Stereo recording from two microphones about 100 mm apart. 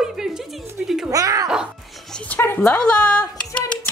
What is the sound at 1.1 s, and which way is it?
Music, 35° right (ahead or behind).